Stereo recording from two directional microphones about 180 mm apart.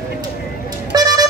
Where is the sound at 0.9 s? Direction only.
20° right (ahead or behind).